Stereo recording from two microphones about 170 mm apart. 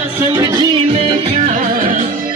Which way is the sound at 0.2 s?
20° right (ahead or behind).